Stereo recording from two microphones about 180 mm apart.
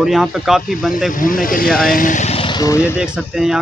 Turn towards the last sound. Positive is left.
turn(degrees=0)  # may be behind; listen again after turning